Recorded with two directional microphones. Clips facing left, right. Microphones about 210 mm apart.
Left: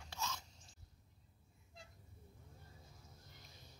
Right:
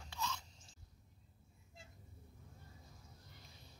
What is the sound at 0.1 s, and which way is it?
Chewing, 40° left (ahead or behind).